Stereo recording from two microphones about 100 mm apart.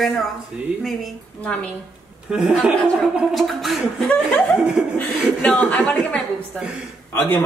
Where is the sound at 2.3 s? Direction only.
5° right (ahead or behind); by 7.4 s 20° left (ahead or behind).